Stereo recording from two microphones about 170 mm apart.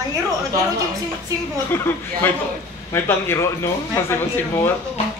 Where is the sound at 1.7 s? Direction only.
15° left (ahead or behind).